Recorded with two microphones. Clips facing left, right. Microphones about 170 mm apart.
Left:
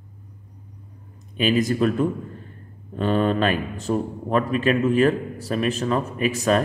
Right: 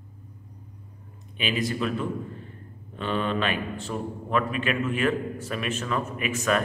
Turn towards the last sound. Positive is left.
turn(degrees=35)  # may be behind; listen again after turning